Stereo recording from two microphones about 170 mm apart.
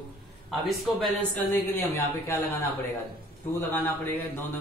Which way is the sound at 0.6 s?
Centre (ahead or behind).